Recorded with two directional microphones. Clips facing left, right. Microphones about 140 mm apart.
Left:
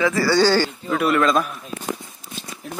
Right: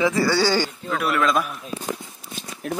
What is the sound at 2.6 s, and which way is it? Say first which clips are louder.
Speech: right 7 dB; 65° right (ahead or behind).